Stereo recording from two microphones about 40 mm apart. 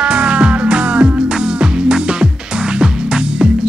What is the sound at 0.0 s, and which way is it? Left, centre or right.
Music, right.